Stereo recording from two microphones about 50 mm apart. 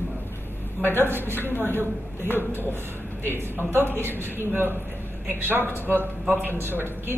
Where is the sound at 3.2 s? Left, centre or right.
Right.